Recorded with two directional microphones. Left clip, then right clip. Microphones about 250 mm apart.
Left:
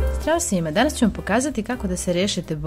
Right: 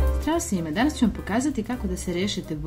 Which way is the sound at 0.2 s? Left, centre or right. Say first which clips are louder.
Left 6 dB; left.